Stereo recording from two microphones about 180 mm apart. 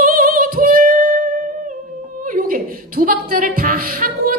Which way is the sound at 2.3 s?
50° right (ahead or behind).